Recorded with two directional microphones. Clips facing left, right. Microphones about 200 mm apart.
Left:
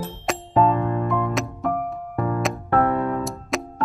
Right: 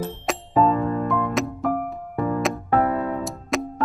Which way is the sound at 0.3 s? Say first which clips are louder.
Even; centre (ahead or behind).